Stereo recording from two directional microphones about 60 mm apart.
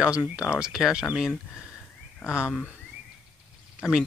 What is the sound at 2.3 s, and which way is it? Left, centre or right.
Speech, centre.